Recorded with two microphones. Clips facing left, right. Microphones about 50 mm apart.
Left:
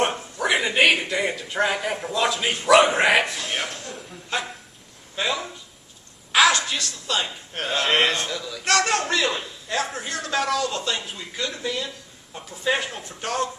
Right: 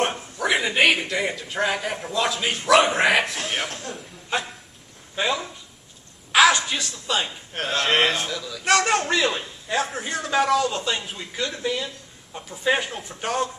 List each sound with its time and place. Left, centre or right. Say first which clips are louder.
0.0 s a sound: left 1 dB; centre
1.1 s speech: left 1 dB; centre
4.3 s speech: right 1 dB; centre
6.5 s a man's voice: even; centre